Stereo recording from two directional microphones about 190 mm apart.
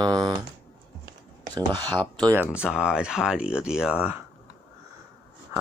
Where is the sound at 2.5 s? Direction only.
5° right (ahead or behind).